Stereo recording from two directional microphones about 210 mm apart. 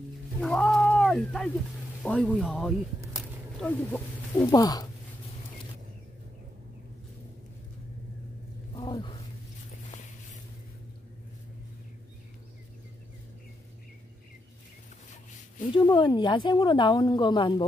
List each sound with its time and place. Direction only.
0.4 s a sound: centre (ahead or behind)
2.0 s speech: centre (ahead or behind)
3.2 s a sound: 5° left (ahead or behind)
4.5 s speech: 20° left (ahead or behind)
8.7 s roaring cats: 20° left (ahead or behind)
15.7 s speech: 20° left (ahead or behind)